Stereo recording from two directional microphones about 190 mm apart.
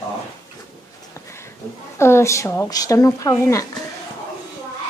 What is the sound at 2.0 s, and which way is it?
Speech, 15° left (ahead or behind).